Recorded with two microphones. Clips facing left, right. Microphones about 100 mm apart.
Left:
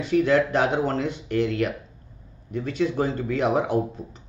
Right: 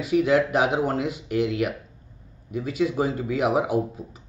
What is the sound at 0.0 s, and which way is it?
A man's voice, 10° right (ahead or behind).